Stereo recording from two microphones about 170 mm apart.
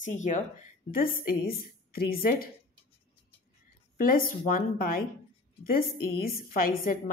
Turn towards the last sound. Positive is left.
turn(degrees=55)  # may be behind; listen again after turning